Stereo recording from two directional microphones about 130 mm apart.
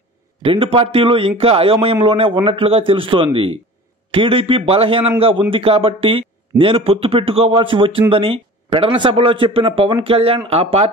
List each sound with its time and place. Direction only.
0.4 s speech: 45° right (ahead or behind)